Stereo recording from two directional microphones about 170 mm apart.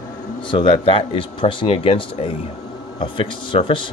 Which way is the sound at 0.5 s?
30° left (ahead or behind).